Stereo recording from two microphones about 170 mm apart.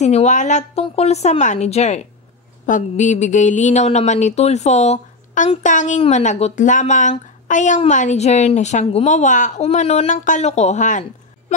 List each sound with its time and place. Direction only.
0.0 s a woman's voice: 40° left (ahead or behind)